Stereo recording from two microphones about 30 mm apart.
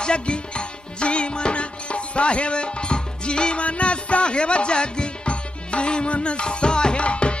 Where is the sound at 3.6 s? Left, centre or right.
Left.